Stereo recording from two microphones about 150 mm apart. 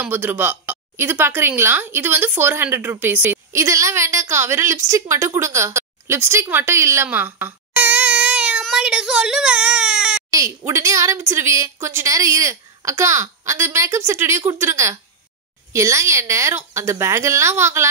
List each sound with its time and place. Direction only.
0.0 s speech: 15° right (ahead or behind)
10.3 s speech: 20° right (ahead or behind)